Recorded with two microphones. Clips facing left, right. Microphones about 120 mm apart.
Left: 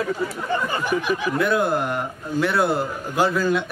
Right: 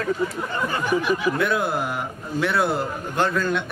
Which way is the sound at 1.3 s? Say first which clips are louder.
Left 2 dB; centre (ahead or behind).